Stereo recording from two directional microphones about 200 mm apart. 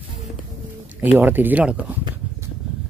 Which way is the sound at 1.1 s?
10° right (ahead or behind).